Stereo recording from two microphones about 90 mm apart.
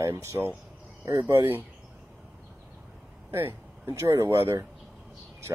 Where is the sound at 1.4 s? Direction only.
25° right (ahead or behind).